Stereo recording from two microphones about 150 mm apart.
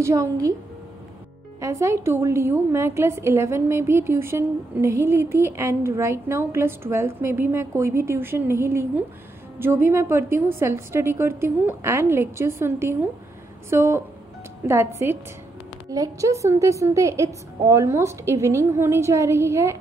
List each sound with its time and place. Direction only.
0.0 s a woman's voice: 20° right (ahead or behind)
1.6 s a woman's voice: 20° right (ahead or behind)